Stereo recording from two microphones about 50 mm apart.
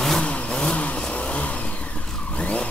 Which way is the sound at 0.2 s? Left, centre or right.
Left.